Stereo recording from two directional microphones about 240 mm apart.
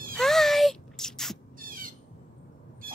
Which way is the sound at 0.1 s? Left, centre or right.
Centre.